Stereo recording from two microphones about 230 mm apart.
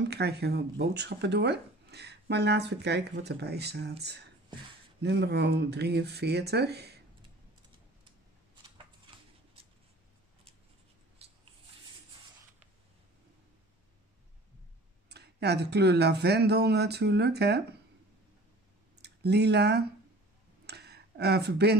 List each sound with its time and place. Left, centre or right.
0.1 s speech: right
5.0 s speech: right
11.2 s a sound: right
15.0 s speech: right
18.9 s speech: right
20.6 s a sound: right